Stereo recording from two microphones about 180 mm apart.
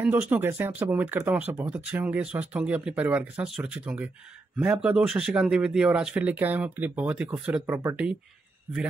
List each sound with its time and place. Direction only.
0.3 s speech: 10° right (ahead or behind)